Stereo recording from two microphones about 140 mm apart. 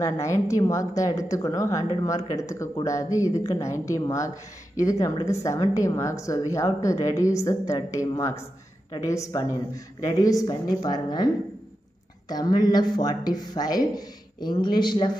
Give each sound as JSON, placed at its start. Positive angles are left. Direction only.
{"t": 0.0, "sound": "a woman's voice", "side_deg": 20}
{"t": 12.3, "sound": "a woman's voice", "side_deg": 30}